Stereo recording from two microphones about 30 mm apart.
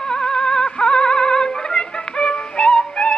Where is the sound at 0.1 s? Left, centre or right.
Left.